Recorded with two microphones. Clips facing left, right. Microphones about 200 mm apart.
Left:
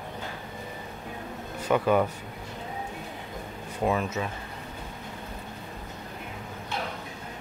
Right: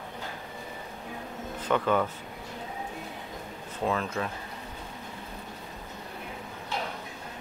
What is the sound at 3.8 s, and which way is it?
Speech, 10° left (ahead or behind).